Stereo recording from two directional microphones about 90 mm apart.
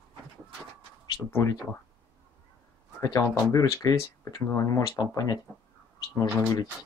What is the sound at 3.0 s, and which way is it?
Speech, 40° left (ahead or behind).